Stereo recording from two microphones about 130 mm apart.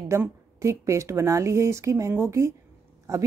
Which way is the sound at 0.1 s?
20° right (ahead or behind).